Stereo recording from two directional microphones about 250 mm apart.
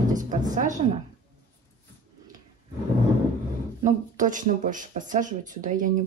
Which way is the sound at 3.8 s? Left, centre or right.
Right.